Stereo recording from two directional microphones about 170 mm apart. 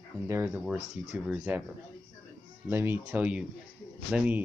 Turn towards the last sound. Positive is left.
turn(degrees=-10)  # may be behind; listen again after turning